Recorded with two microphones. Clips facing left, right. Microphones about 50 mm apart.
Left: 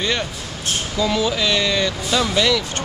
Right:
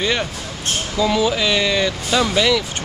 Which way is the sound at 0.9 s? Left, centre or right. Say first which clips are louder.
Right 3 dB; centre.